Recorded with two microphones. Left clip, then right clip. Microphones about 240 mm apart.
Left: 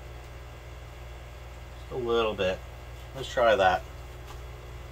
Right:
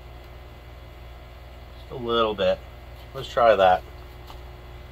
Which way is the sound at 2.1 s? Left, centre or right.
Centre.